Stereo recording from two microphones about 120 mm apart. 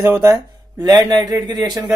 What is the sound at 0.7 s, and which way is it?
Speech, 35° right (ahead or behind).